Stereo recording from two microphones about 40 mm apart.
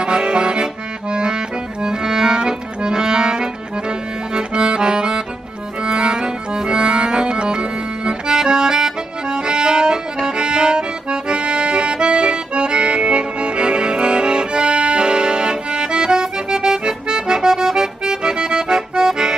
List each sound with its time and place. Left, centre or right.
0.0 s accordion: right